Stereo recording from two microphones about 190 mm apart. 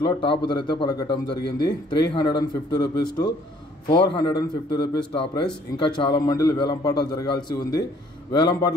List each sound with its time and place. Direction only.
0.0 s a man's voice: 25° left (ahead or behind)